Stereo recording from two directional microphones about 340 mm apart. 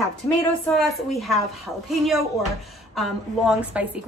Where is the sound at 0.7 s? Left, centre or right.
Centre.